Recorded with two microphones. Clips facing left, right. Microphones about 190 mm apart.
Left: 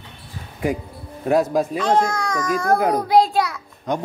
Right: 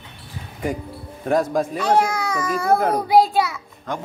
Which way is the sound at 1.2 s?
5° left (ahead or behind).